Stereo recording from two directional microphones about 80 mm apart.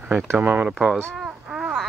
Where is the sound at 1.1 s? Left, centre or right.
Centre.